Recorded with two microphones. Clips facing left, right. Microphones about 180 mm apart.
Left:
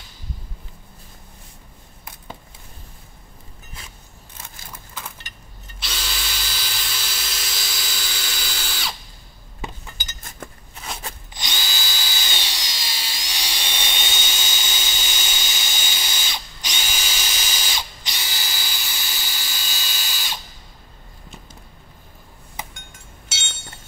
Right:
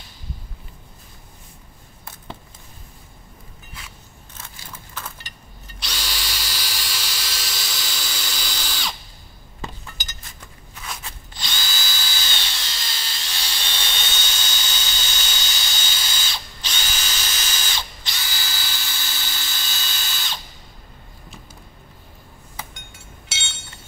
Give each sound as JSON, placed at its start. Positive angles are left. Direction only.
{"t": 5.8, "sound": "drill", "side_deg": 0}
{"t": 10.7, "sound": "a sound", "side_deg": 30}
{"t": 11.3, "sound": "drill", "side_deg": 20}